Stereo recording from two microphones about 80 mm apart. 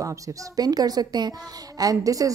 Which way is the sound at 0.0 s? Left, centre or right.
Right.